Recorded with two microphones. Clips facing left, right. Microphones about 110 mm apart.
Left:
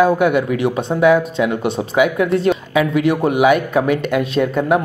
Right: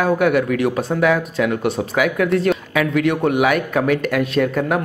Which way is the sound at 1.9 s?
20° left (ahead or behind).